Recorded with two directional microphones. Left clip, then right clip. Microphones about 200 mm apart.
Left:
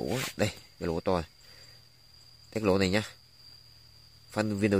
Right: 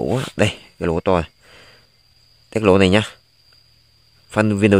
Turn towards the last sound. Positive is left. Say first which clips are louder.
# right 12 dB
turn(degrees=-45)  # may be behind; listen again after turning